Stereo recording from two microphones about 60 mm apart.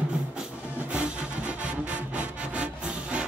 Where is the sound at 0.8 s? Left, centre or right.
Centre.